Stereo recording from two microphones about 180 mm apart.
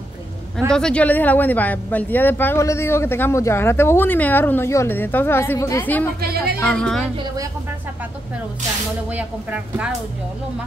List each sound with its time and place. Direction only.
0.7 s speech: 5° left (ahead or behind)
6.2 s speech: 60° right (ahead or behind)
6.6 s a woman's voice: 5° left (ahead or behind)
9.1 s speech: 5° right (ahead or behind)